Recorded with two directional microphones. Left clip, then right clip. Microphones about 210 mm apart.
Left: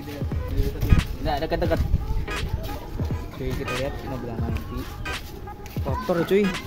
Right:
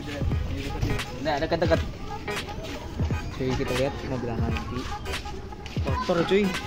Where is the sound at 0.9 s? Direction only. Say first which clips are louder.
Even; 5° right (ahead or behind).